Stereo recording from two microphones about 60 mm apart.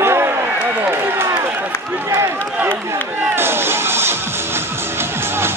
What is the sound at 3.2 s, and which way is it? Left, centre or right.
Music, right.